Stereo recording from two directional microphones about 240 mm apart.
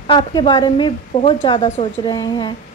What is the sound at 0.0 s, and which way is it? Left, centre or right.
A woman's voice, centre.